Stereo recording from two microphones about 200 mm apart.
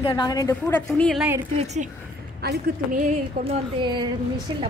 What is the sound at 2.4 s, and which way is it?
Speech, 55° right (ahead or behind).